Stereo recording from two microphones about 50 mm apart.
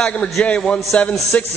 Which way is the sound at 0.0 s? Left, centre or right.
Centre.